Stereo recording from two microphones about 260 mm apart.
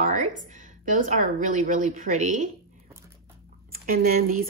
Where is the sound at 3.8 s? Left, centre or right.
Right.